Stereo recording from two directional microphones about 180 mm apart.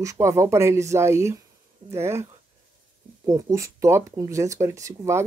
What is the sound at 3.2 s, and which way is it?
Speech, 20° right (ahead or behind).